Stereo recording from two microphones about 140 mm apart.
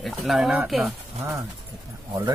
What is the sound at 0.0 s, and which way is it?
Speech, centre (ahead or behind).